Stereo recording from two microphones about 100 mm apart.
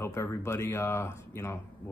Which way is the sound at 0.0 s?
25° left (ahead or behind).